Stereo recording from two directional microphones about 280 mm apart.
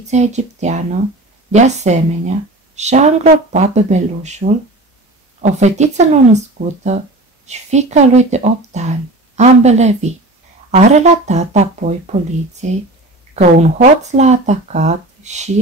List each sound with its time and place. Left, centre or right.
0.0 s speech: right